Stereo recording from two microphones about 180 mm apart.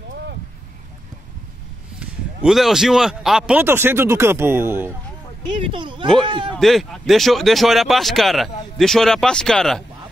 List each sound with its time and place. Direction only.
2.0 s a man's voice: centre (ahead or behind)
5.7 s speech: 25° right (ahead or behind)
6.5 s speech: centre (ahead or behind)